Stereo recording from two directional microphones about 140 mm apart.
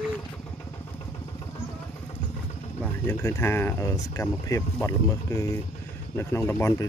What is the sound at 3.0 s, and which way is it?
Speech, 20° left (ahead or behind).